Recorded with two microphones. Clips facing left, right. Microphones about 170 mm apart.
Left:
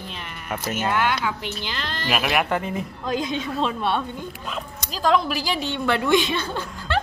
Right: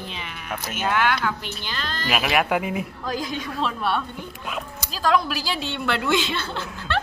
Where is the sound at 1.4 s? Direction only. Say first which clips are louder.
Left 2 dB; 20° left (ahead or behind).